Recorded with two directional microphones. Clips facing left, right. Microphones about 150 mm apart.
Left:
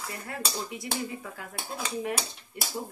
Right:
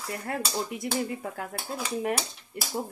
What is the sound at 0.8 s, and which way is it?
Speech, 50° right (ahead or behind).